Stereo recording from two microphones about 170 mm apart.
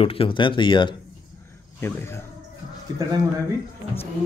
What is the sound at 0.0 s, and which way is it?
Speech, 30° left (ahead or behind).